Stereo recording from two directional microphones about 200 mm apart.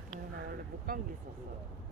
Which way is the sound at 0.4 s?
45° right (ahead or behind).